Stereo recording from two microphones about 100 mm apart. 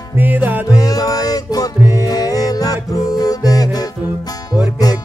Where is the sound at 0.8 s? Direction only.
40° left (ahead or behind).